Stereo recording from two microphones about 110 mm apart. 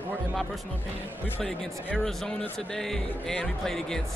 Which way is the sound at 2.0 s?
5° left (ahead or behind).